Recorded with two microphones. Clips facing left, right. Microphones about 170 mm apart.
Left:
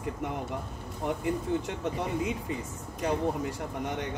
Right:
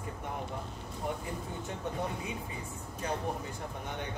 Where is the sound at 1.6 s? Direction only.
90° left.